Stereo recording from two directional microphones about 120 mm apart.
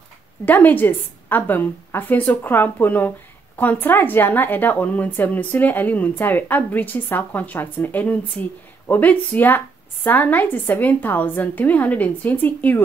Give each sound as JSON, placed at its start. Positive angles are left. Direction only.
{"t": 0.5, "sound": "a woman's voice", "side_deg": 15}